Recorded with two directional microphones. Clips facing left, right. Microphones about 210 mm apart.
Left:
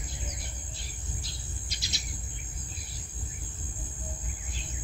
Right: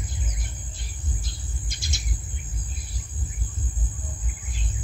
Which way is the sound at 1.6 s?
50° right (ahead or behind).